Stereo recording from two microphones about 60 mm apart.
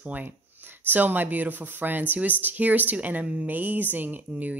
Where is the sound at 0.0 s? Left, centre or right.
Right.